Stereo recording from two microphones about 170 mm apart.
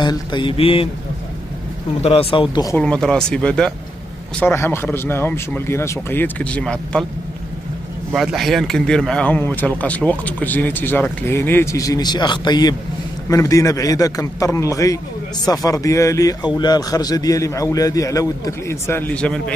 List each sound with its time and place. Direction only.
0.0 s a man's voice: 25° left (ahead or behind)
2.0 s speech: 30° left (ahead or behind)
2.7 s speech: 5° left (ahead or behind)
8.1 s a man's voice: centre (ahead or behind)